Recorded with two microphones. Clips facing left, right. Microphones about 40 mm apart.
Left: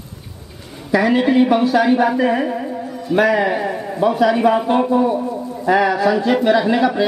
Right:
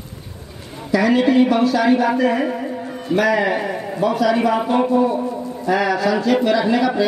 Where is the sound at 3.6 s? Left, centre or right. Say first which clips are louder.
Left 2 dB; centre.